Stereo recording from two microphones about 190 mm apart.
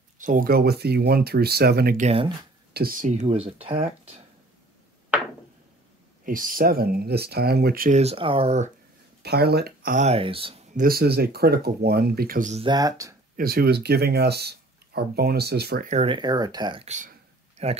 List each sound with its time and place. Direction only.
0.2 s speech: 45° right (ahead or behind)
2.0 s speech: 30° right (ahead or behind)
2.7 s speech: 50° right (ahead or behind); by 4.2 s 30° right (ahead or behind)
6.2 s speech: 45° right (ahead or behind)
8.0 s speech: 30° right (ahead or behind)
9.2 s speech: 55° right (ahead or behind); by 10.6 s 30° right (ahead or behind)
10.7 s speech: 50° right (ahead or behind)
12.6 s speech: 20° right (ahead or behind)
13.4 s speech: 50° right (ahead or behind)
15.9 s speech: 30° right (ahead or behind)
16.8 s speech: 40° right (ahead or behind)